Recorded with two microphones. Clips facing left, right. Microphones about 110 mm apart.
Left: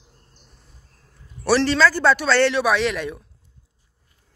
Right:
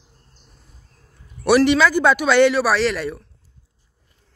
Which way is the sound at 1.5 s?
15° right (ahead or behind).